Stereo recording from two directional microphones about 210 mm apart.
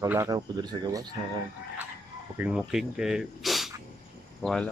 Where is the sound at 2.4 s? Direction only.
5° right (ahead or behind).